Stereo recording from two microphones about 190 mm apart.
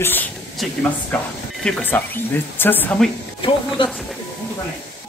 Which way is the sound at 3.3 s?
25° left (ahead or behind).